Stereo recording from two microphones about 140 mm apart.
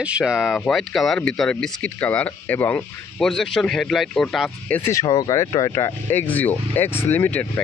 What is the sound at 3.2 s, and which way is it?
Speech, 5° left (ahead or behind).